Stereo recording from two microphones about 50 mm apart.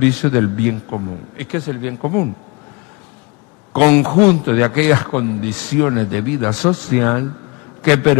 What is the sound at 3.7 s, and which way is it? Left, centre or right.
A man's voice, centre.